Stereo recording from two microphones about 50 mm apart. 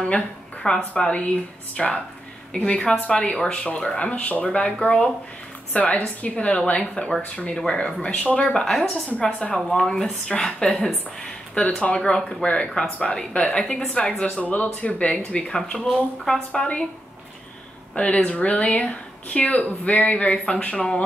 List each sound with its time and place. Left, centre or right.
0.0 s speech: centre
5.7 s speech: left
7.5 s speech: centre
8.1 s speech: left
8.5 s speech: centre
10.7 s a woman's voice: centre
11.5 s speech: left
12.0 s speech: centre
15.4 s speech: centre
17.9 s speech: left